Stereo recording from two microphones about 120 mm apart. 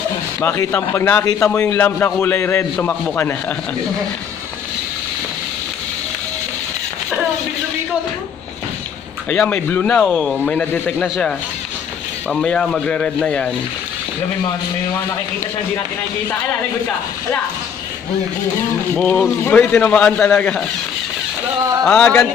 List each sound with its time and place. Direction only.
0.6 s a man's voice: 20° left (ahead or behind)
9.5 s a man's voice: 15° left (ahead or behind)
18.9 s a man's voice: 10° left (ahead or behind)
21.9 s a man's voice: 10° left (ahead or behind)